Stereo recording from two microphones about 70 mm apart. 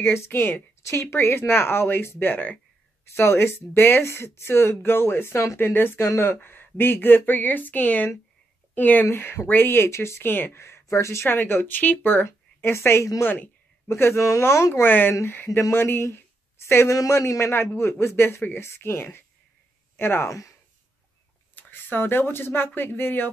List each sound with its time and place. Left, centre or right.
0.0 s a woman's voice: left
5.7 s a woman's voice: left
11.2 s a woman's voice: left
20.2 s speech: left
21.5 s a woman's voice: left